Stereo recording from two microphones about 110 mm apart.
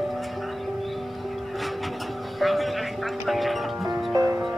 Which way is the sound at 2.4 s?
Centre (ahead or behind).